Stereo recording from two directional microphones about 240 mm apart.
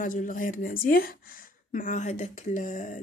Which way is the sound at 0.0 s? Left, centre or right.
Left.